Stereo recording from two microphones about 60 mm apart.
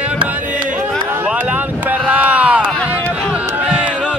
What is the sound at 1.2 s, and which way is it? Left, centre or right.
Boat, right.